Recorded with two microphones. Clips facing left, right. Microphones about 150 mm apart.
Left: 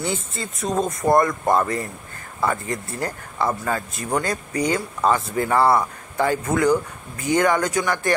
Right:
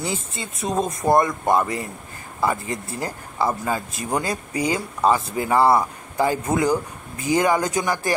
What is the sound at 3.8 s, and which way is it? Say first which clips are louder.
Speech: left 1 dB; 20° right (ahead or behind).